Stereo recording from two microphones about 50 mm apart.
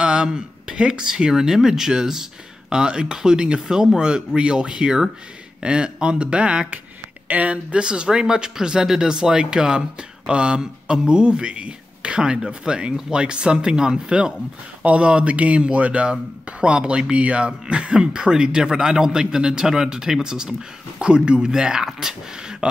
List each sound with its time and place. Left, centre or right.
0.0 s speech: centre